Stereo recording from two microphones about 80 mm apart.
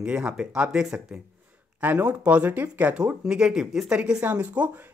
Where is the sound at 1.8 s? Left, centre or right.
Centre.